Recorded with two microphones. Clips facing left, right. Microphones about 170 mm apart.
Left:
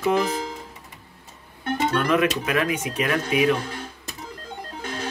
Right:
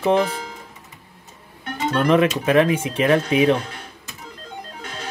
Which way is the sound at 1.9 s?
30° right (ahead or behind).